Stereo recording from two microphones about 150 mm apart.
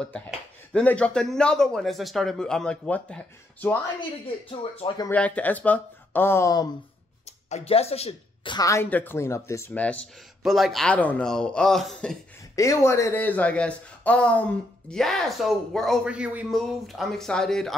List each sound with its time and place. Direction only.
0.7 s speech: 10° left (ahead or behind)
4.5 s speech: 35° left (ahead or behind)
5.1 s speech: 10° left (ahead or behind)
7.4 s speech: 45° left (ahead or behind)
8.5 s speech: 20° left (ahead or behind); by 12.2 s centre (ahead or behind)
12.5 s speech: 20° left (ahead or behind); by 17.7 s 5° left (ahead or behind)